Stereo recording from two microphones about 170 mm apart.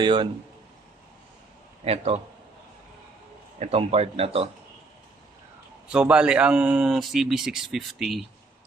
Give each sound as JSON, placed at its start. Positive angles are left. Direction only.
{"t": 0.0, "sound": "speech", "side_deg": -25}
{"t": 1.9, "sound": "speech", "side_deg": -35}
{"t": 3.5, "sound": "speech", "side_deg": -35}
{"t": 5.9, "sound": "a man's voice", "side_deg": -5}